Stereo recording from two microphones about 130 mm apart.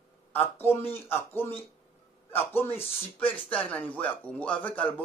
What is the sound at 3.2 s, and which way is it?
Speech, 10° left (ahead or behind).